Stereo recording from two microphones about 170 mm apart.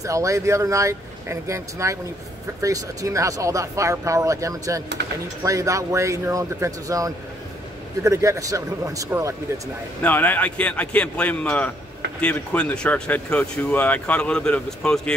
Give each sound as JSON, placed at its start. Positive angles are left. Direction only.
{"t": 0.0, "sound": "speech", "side_deg": -20}
{"t": 10.0, "sound": "speech", "side_deg": 10}